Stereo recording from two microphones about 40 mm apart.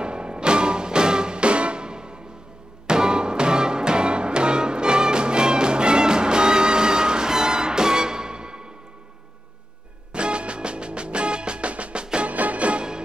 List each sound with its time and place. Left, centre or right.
0.0 s music: right
10.1 s music: right
12.3 s music: right